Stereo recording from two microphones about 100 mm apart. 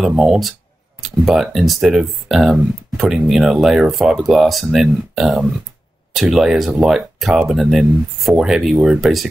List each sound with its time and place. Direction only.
0.0 s speech: 5° right (ahead or behind)